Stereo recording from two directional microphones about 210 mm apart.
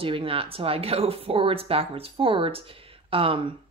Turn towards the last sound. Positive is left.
turn(degrees=-25)  # may be behind; listen again after turning